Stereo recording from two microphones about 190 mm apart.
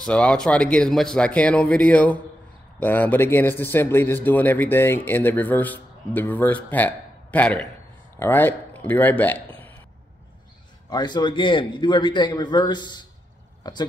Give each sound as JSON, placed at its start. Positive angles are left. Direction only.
{"t": 0.0, "sound": "speech", "side_deg": 5}
{"t": 10.9, "sound": "a man's voice", "side_deg": 20}